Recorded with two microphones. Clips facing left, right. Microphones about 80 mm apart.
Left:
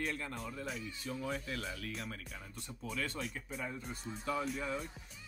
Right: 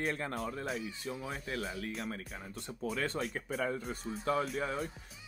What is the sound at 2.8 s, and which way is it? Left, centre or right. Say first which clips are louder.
Speech: right 5 dB; right.